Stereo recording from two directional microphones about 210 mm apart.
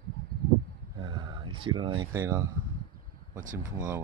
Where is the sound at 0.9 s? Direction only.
20° right (ahead or behind).